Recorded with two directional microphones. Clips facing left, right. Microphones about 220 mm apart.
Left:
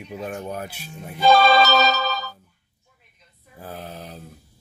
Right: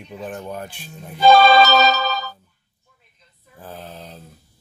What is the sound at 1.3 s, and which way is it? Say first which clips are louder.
Music: right 3 dB; 55° right (ahead or behind).